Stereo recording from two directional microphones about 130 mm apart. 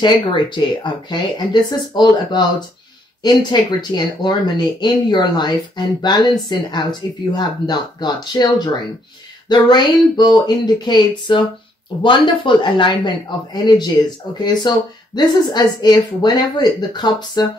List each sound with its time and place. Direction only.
0.0 s speech: 35° left (ahead or behind)